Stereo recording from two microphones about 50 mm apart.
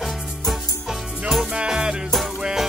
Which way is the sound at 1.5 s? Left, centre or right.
Centre.